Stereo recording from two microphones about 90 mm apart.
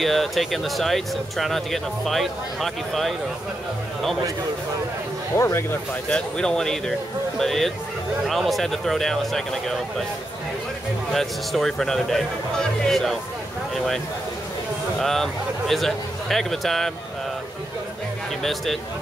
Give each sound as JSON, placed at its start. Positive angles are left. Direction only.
{"t": 0.0, "sound": "speech", "side_deg": 0}
{"t": 5.4, "sound": "speech", "side_deg": 30}
{"t": 6.0, "sound": "speech", "side_deg": 10}
{"t": 11.1, "sound": "speech", "side_deg": 5}
{"t": 18.4, "sound": "speech", "side_deg": 0}